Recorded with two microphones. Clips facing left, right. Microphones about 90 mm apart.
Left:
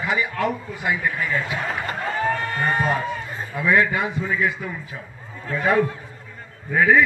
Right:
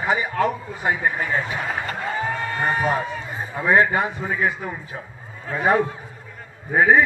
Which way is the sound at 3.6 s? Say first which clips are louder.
Right 2 dB; 35° right (ahead or behind).